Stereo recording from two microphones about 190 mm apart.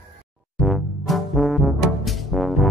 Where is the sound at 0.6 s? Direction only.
Centre (ahead or behind).